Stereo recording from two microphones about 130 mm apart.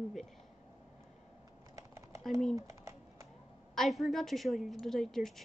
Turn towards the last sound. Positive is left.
turn(degrees=5)  # may be behind; listen again after turning